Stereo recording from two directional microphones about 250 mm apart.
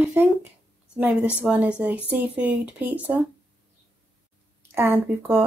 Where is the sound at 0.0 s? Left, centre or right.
Centre.